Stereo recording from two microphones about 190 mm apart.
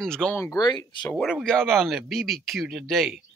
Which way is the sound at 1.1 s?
Centre (ahead or behind).